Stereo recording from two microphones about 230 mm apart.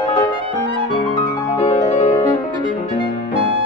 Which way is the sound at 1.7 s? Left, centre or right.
Left.